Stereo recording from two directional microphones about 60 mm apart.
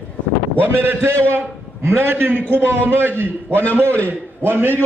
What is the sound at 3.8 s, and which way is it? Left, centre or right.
Speech, right.